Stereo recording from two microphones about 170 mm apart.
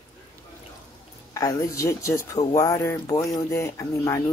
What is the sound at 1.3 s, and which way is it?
Speech, 20° left (ahead or behind).